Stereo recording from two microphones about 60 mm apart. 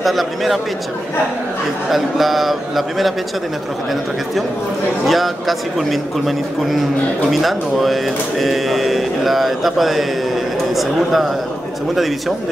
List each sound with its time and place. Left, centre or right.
0.0 s speech: centre
1.9 s speech: centre
5.0 s speech: centre